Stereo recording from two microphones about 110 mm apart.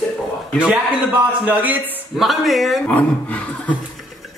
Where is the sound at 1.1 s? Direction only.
15° right (ahead or behind).